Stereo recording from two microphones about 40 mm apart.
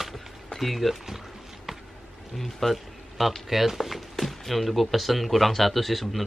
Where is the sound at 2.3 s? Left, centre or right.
Centre.